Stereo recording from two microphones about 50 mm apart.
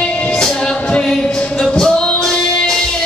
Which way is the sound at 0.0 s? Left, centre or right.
Centre.